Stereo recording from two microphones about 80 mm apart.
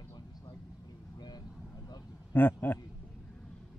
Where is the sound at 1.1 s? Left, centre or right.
Left.